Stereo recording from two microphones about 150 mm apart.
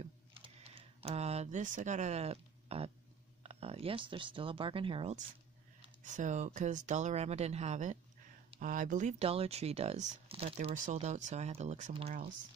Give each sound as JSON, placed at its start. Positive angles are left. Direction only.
{"t": 0.3, "sound": "a sound", "side_deg": -35}
{"t": 3.4, "sound": "speech", "side_deg": -40}
{"t": 6.0, "sound": "speech", "side_deg": -55}
{"t": 8.5, "sound": "speech", "side_deg": -60}
{"t": 9.2, "sound": "speech", "side_deg": -40}
{"t": 10.7, "sound": "speech", "side_deg": -50}